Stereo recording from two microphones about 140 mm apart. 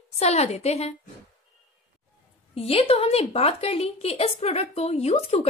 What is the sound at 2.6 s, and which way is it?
A woman's voice, 45° left (ahead or behind).